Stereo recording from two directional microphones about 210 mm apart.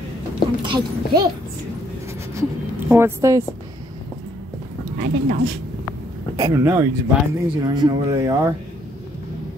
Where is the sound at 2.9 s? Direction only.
15° right (ahead or behind).